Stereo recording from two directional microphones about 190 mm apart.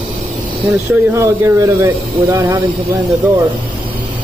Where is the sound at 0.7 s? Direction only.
15° right (ahead or behind).